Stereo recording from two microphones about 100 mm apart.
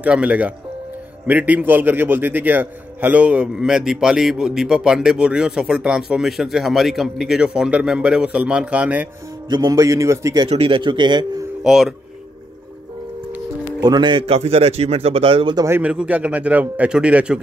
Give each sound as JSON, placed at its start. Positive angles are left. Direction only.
{"t": 0.0, "sound": "a man's voice", "side_deg": -15}
{"t": 9.5, "sound": "a man's voice", "side_deg": -40}
{"t": 10.5, "sound": "speech", "side_deg": -70}
{"t": 10.8, "sound": "a man's voice", "side_deg": -50}
{"t": 11.6, "sound": "speech", "side_deg": 0}
{"t": 13.7, "sound": "a man's voice", "side_deg": -45}
{"t": 14.2, "sound": "speech", "side_deg": -90}
{"t": 15.7, "sound": "a man's voice", "side_deg": -10}